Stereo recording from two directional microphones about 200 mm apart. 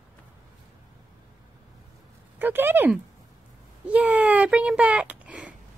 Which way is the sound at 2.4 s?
10° right (ahead or behind).